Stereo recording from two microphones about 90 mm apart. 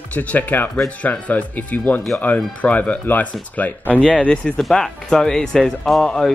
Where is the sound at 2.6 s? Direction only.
15° left (ahead or behind).